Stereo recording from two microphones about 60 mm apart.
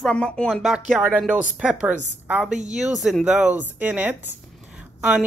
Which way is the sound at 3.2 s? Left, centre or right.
Right.